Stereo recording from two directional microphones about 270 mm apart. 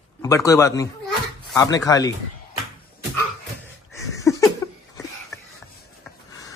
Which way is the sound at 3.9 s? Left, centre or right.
Centre.